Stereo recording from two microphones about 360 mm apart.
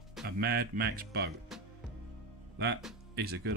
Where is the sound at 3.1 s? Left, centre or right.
Right.